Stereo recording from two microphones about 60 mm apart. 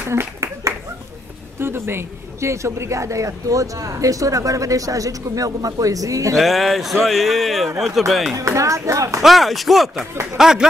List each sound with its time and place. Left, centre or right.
0.1 s a man's voice: right
6.3 s a man's voice: centre
8.4 s speech: right
9.2 s a man's voice: centre